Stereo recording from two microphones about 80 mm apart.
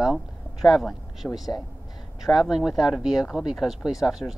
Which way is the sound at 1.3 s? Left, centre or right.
Left.